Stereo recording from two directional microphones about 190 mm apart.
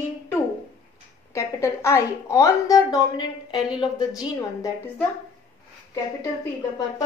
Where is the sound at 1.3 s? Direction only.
15° left (ahead or behind).